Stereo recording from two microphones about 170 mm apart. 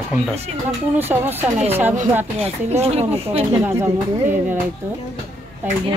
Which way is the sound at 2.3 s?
35° right (ahead or behind).